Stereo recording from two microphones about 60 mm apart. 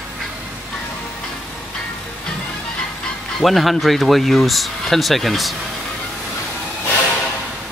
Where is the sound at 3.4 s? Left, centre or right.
Centre.